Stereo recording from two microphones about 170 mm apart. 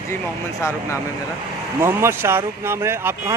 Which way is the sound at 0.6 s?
15° left (ahead or behind).